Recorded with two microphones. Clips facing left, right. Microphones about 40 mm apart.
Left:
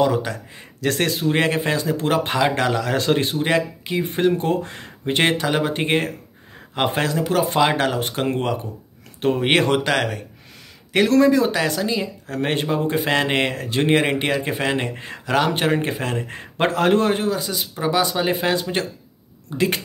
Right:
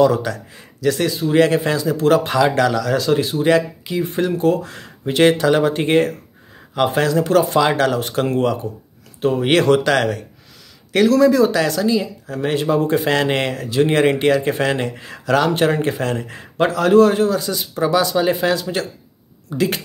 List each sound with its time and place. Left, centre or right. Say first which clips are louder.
0.0 s speech: right 4 dB; left
0.7 s speech: right 3 dB; left
1.2 s speech: right 7 dB; left
3.4 s speech: right 5 dB; left
5.4 s speech: right 5 dB; centre
7.2 s speech: right 6 dB; centre
7.4 s speech: right 2 dB; left
9.2 s speech: right 2 dB; left; by 10.2 s centre
11.2 s speech: right 3 dB; left
12.3 s speech: right 1 dB; left
12.6 s speech: right 4 dB; centre; by 13.9 s left
14.1 s speech: right 5 dB; centre
16.3 s speech: right 1 dB; left